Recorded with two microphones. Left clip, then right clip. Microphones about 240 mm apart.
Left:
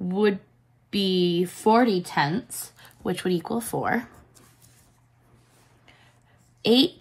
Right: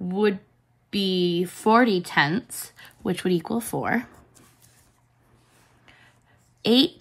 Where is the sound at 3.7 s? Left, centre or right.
Right.